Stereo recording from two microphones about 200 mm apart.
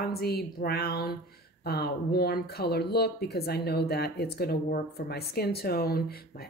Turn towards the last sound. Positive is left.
turn(degrees=50)  # may be behind; listen again after turning